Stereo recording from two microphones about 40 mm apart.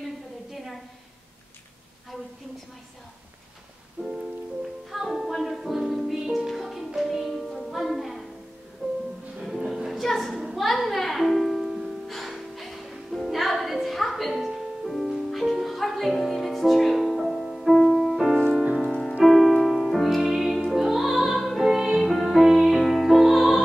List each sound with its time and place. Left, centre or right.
4.0 s music: right
4.9 s music: centre
8.8 s music: right
9.4 s music: centre
9.8 s a sound: centre
10.7 s music: centre
14.3 s music: centre
14.9 s music: centre
22.0 s music: centre